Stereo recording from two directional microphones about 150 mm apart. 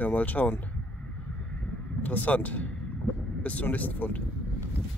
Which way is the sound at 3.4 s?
10° left (ahead or behind).